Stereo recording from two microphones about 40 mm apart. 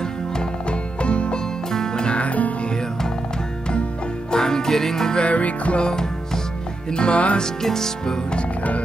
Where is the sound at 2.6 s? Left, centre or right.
Centre.